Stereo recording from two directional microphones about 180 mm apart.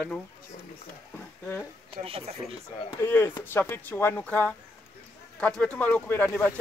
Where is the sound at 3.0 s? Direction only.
15° left (ahead or behind).